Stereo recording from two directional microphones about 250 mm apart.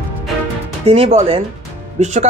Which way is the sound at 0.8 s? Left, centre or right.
Right.